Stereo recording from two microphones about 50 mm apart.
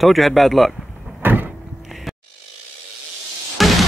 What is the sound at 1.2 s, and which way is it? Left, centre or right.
Door, right.